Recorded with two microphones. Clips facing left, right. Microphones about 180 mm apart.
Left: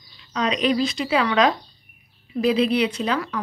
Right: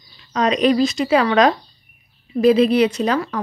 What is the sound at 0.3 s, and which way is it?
Speech, 45° right (ahead or behind).